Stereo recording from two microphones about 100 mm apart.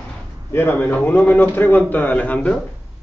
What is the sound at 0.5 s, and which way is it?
A man's voice, 20° left (ahead or behind).